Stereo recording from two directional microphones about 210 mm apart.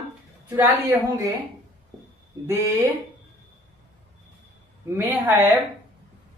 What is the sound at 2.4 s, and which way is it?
Speech, 15° right (ahead or behind).